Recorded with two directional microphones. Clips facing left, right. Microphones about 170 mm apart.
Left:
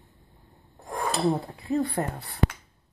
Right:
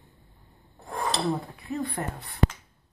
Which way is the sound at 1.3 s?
30° left (ahead or behind).